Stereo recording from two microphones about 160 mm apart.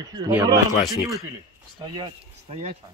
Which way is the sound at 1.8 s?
30° right (ahead or behind).